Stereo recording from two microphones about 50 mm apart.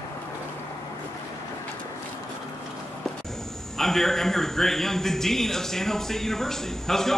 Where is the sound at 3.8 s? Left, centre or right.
Centre.